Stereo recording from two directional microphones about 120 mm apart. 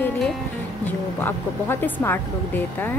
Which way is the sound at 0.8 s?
15° left (ahead or behind).